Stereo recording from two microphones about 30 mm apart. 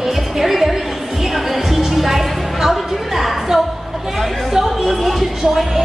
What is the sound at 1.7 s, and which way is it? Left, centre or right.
Music, centre.